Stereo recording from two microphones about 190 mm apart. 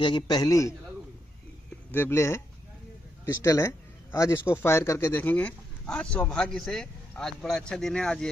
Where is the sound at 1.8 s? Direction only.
10° left (ahead or behind).